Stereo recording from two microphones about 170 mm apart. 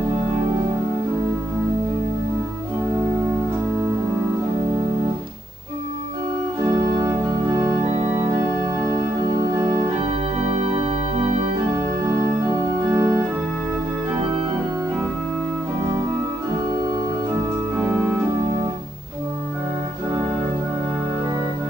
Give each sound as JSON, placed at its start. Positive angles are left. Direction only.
{"t": 6.7, "sound": "organ", "side_deg": -20}
{"t": 9.4, "sound": "organ", "side_deg": -20}
{"t": 12.4, "sound": "organ", "side_deg": -20}